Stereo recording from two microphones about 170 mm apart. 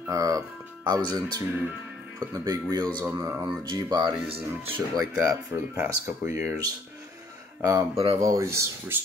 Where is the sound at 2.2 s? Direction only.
20° right (ahead or behind).